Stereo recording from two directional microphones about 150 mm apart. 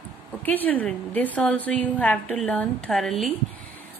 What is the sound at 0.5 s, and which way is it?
A woman's voice, 10° left (ahead or behind).